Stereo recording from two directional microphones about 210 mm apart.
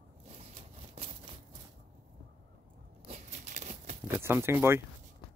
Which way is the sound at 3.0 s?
35° right (ahead or behind).